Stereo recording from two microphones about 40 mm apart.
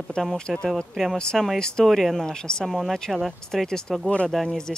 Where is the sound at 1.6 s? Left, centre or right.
Centre.